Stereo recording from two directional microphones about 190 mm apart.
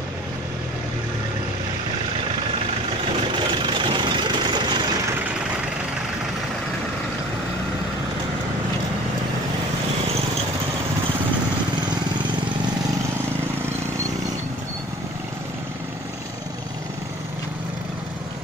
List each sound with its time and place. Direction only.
3.6 s vehicle: 25° right (ahead or behind)